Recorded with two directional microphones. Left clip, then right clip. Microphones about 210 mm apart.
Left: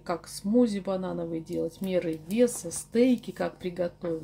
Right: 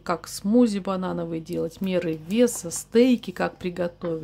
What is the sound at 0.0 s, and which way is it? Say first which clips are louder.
Speech: right 5 dB; 30° right (ahead or behind).